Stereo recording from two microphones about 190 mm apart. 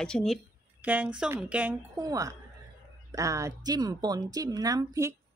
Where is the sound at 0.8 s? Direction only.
10° right (ahead or behind).